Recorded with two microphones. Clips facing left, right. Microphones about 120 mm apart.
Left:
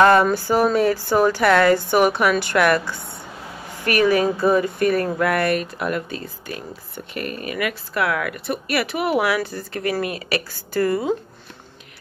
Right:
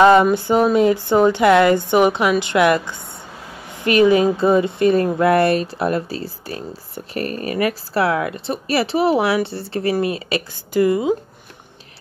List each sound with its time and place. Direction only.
0.0 s speech: 15° right (ahead or behind)